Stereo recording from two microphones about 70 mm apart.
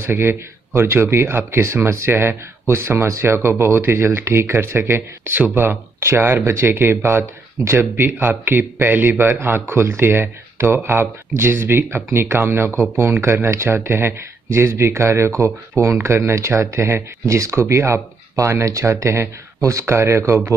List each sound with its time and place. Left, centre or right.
0.0 s speech: right